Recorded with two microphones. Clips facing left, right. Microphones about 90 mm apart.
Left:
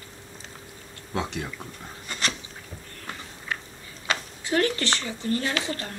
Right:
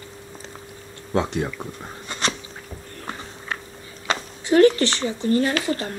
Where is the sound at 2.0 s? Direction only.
25° right (ahead or behind).